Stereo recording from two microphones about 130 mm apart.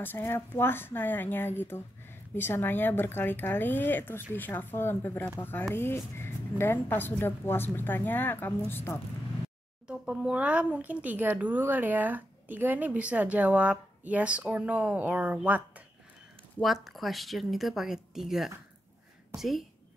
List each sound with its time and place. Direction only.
0.0 s speech: 15° left (ahead or behind)
9.8 s speech: 5° right (ahead or behind)
16.6 s speech: centre (ahead or behind)